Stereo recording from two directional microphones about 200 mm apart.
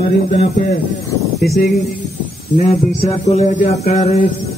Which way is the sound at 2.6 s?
35° left (ahead or behind).